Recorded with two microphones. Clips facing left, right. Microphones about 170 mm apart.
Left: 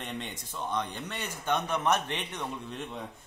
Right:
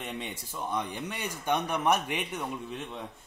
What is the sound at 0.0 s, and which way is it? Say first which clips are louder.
A man's voice: right 1 dB; 5° right (ahead or behind).